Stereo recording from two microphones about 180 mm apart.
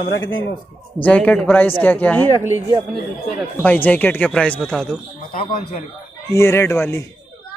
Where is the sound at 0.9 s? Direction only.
10° left (ahead or behind).